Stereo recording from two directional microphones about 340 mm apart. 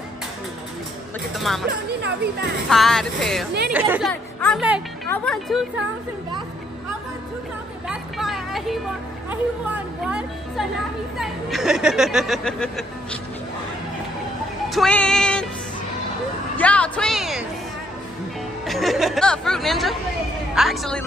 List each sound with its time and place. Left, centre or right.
1.3 s speech: centre
2.0 s speech: right
2.7 s speech: centre
7.9 s vehicle: centre
10.0 s speech: centre
14.7 s music: centre
16.5 s speech: centre
18.7 s speech: centre